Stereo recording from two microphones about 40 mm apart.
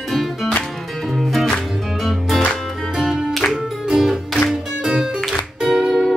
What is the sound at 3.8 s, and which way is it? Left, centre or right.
Music, centre.